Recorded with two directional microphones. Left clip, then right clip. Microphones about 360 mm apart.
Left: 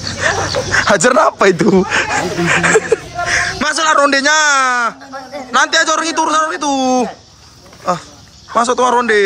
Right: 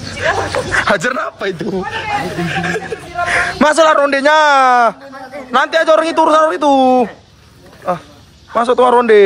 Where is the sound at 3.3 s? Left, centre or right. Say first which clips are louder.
Right 3 dB; centre.